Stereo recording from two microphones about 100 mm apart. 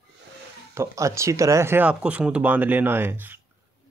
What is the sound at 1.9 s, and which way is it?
Speech, 10° right (ahead or behind).